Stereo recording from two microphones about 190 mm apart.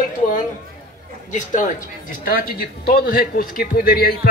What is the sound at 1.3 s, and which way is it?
Speech, 40° left (ahead or behind).